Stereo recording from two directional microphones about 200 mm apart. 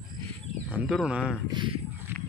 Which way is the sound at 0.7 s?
5° right (ahead or behind).